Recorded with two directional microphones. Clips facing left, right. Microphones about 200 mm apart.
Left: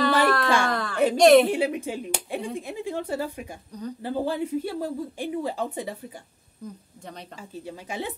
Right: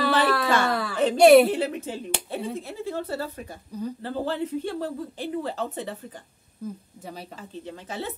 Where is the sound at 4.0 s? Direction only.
15° left (ahead or behind).